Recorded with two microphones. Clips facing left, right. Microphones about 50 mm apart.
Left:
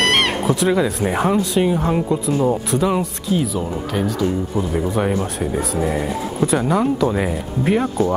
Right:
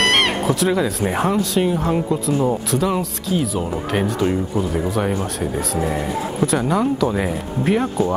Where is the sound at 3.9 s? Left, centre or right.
Right.